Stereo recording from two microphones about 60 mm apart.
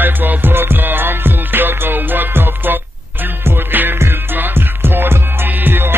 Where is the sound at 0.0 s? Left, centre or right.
Right.